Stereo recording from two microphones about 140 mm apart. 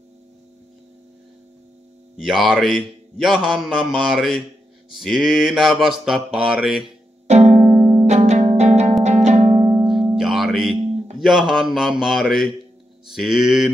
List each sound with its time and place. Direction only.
2.2 s a man's voice: 5° right (ahead or behind)
7.2 s music: 55° right (ahead or behind)
10.1 s music: 5° right (ahead or behind)
11.1 s a man's voice: 5° right (ahead or behind)